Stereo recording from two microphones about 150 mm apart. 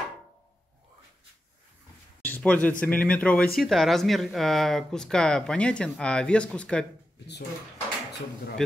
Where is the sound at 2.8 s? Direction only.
10° left (ahead or behind).